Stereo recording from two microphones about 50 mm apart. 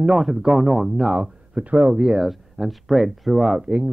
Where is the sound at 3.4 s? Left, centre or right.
Centre.